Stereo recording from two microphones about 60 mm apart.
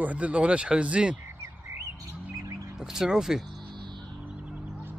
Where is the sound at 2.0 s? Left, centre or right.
Right.